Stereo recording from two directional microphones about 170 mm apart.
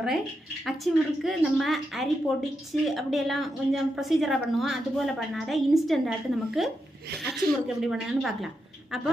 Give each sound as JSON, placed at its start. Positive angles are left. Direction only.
{"t": 0.7, "sound": "a woman's voice", "side_deg": 0}